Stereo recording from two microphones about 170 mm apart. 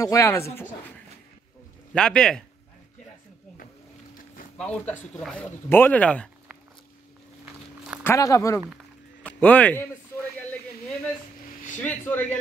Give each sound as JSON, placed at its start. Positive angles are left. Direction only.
{"t": 0.0, "sound": "speech", "side_deg": 20}
{"t": 2.0, "sound": "speech", "side_deg": 5}
{"t": 4.6, "sound": "speech", "side_deg": 5}
{"t": 8.0, "sound": "speech", "side_deg": 15}
{"t": 9.4, "sound": "speech", "side_deg": 10}
{"t": 11.8, "sound": "speech", "side_deg": 10}